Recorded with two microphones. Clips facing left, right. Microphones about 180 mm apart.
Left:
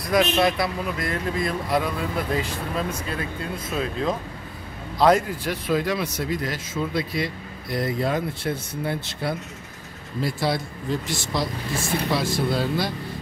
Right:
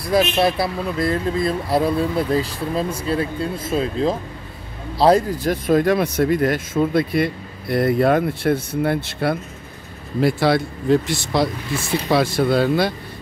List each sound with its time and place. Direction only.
0.1 s speech: 30° right (ahead or behind); by 12.9 s 65° right (ahead or behind)